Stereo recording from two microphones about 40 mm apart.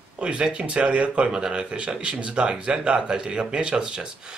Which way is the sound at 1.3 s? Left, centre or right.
Centre.